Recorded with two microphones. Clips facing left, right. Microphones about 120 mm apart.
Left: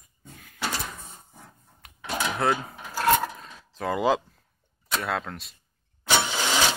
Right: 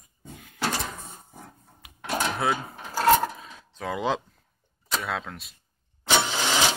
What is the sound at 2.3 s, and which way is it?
Speech, centre (ahead or behind).